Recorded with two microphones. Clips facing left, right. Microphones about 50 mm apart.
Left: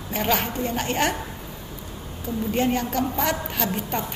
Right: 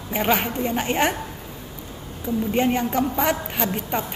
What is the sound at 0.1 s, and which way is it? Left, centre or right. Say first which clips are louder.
A woman's voice: right 2 dB; centre.